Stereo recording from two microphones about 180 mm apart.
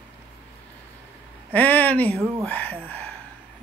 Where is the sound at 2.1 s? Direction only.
15° right (ahead or behind).